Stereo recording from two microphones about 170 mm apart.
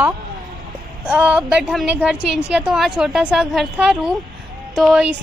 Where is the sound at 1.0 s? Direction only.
5° right (ahead or behind).